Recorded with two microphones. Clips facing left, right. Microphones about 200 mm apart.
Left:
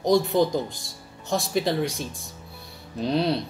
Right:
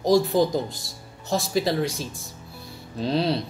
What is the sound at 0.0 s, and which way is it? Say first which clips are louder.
Speech: right 1 dB; centre (ahead or behind).